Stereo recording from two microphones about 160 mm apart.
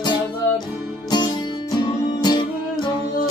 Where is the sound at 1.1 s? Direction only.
25° left (ahead or behind).